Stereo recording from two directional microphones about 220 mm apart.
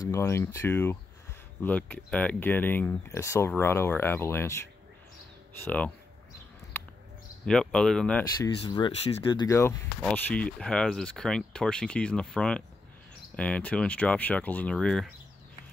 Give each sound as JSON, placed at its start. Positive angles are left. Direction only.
{"t": 0.0, "sound": "speech", "side_deg": 10}
{"t": 7.4, "sound": "speech", "side_deg": 5}
{"t": 8.6, "sound": "speech", "side_deg": 20}